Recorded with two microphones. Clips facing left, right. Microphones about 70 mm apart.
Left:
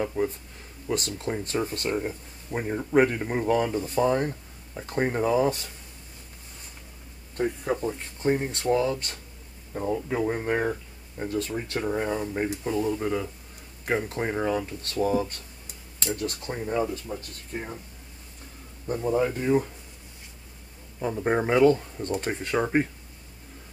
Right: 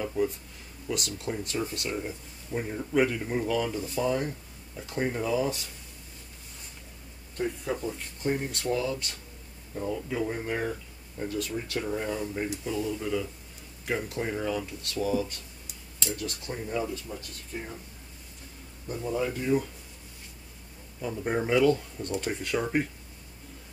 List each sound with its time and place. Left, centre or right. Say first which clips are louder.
0.2 s speech: left 1 dB; left
7.3 s speech: left 4 dB; left
18.9 s speech: left 5 dB; left
21.0 s speech: left 4 dB; left